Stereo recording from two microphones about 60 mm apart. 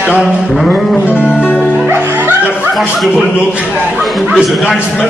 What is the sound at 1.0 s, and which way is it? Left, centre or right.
Music, left.